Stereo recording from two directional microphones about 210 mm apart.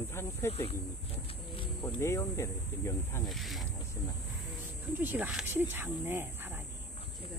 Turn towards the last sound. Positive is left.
turn(degrees=-10)  # may be behind; listen again after turning